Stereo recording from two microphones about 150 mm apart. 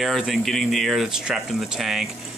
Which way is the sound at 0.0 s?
Centre (ahead or behind).